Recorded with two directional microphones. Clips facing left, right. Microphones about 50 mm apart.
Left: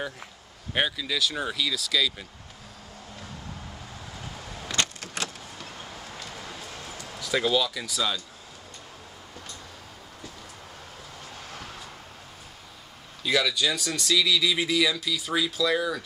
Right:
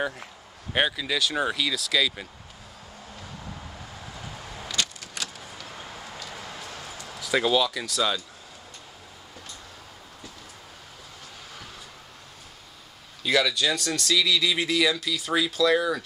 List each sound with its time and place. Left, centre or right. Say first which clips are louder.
0.7 s speech: right 2 dB; centre
4.2 s vehicle: even; centre
4.6 s keys jangling: left 2 dB; left
5.7 s vehicle: right 1 dB; centre
6.7 s a sound: right 1 dB; centre
7.1 s speech: right 2 dB; centre
13.2 s speech: right 1 dB; centre